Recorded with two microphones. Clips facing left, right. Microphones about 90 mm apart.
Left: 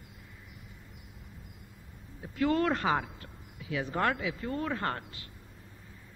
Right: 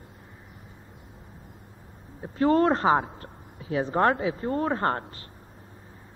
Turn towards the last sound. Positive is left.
turn(degrees=-35)  # may be behind; listen again after turning